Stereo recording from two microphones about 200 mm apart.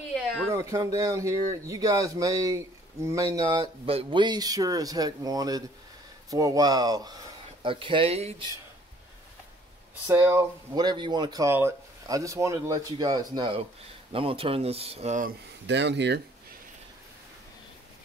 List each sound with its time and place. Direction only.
0.5 s speech: 15° right (ahead or behind); by 8.5 s 30° right (ahead or behind)
10.0 s speech: 15° right (ahead or behind); by 15.3 s 35° right (ahead or behind)
15.6 s speech: 60° right (ahead or behind)